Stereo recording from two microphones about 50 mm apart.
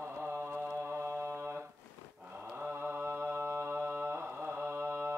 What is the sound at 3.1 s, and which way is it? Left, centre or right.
Mantra, right.